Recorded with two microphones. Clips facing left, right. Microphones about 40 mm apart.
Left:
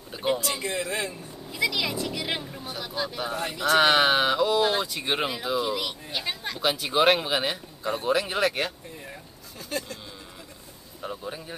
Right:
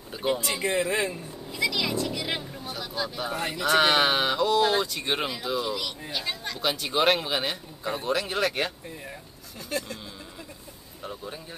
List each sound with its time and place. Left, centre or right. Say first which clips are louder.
0.1 s a sound: left 1 dB; centre
0.6 s a man's voice: right 4 dB; centre
1.5 s speech: even; centre
11.0 s speech: left 3 dB; centre